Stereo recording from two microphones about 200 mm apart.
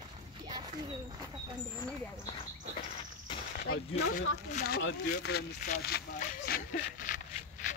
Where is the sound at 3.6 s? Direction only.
50° left (ahead or behind).